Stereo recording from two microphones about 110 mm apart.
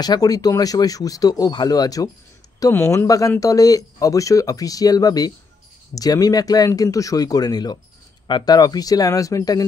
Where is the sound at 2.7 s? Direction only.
20° left (ahead or behind).